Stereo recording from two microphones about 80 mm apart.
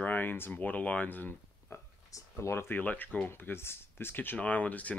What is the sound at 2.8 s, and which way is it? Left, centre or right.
Speech, left.